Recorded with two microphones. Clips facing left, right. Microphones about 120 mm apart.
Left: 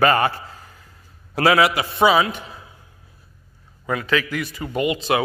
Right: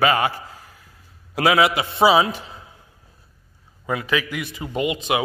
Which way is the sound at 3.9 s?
15° right (ahead or behind).